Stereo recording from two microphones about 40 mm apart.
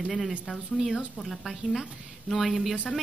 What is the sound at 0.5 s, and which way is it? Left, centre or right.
Speech, centre.